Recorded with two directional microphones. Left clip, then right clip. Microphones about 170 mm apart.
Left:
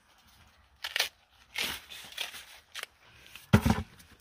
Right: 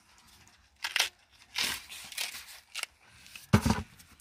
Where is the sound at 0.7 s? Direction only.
30° left (ahead or behind).